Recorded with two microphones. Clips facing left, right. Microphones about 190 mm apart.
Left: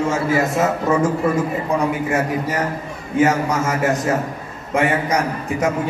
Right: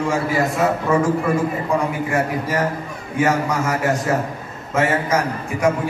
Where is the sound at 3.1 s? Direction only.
20° left (ahead or behind).